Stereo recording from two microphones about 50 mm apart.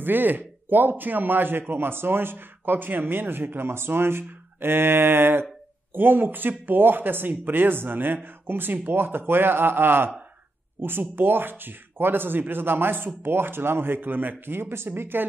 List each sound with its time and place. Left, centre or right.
0.0 s a man's voice: right